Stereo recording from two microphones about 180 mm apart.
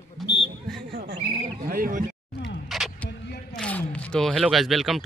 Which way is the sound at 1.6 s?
50° right (ahead or behind).